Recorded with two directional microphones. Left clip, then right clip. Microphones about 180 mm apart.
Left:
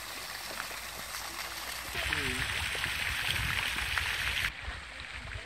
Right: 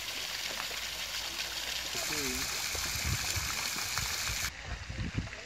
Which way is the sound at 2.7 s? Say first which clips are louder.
Left 3 dB; 45° right (ahead or behind).